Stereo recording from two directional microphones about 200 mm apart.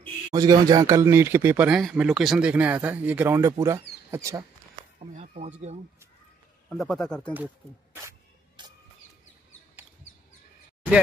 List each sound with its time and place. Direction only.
0.3 s speech: 20° right (ahead or behind)
5.1 s speech: 35° right (ahead or behind)
6.7 s speech: centre (ahead or behind)
7.3 s speech: 10° right (ahead or behind)
8.6 s bird: 25° right (ahead or behind)
9.8 s bird: 10° right (ahead or behind)